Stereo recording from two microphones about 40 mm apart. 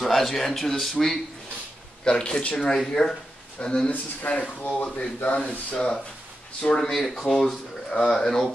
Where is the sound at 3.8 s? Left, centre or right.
Left.